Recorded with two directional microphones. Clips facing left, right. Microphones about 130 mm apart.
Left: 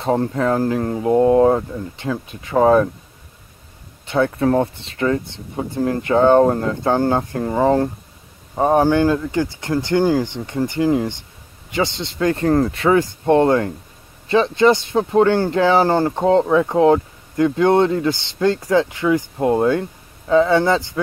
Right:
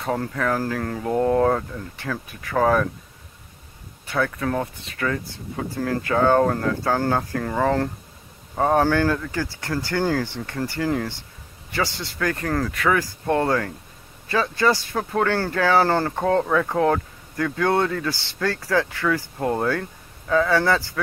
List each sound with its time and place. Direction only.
0.0 s speech: 25° left (ahead or behind)
4.1 s speech: 30° left (ahead or behind)